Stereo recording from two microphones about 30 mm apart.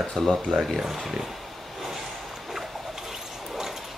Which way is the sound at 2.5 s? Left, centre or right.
Centre.